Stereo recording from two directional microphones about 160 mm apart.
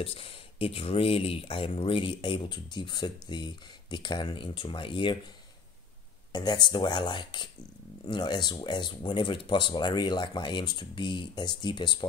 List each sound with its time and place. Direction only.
0.0 s speech: 35° left (ahead or behind)
6.3 s speech: 25° left (ahead or behind)